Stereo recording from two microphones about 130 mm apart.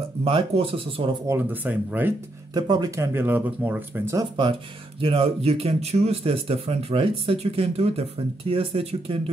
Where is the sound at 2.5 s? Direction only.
30° right (ahead or behind); by 4.2 s 15° right (ahead or behind).